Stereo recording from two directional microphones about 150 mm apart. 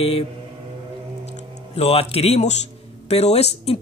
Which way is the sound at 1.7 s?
40° left (ahead or behind).